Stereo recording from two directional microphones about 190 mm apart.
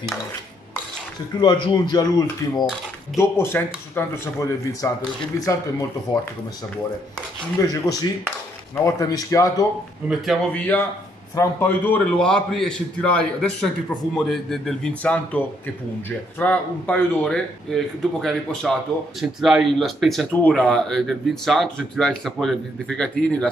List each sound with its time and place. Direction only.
1.4 s speech: 20° left (ahead or behind)
7.6 s speech: 15° left (ahead or behind)
10.0 s a man's voice: centre (ahead or behind)